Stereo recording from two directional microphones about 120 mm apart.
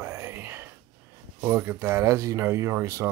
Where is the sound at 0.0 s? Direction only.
20° right (ahead or behind).